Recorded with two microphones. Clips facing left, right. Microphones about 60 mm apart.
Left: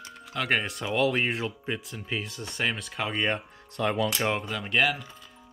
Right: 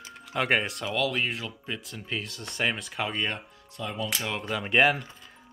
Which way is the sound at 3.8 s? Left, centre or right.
Left.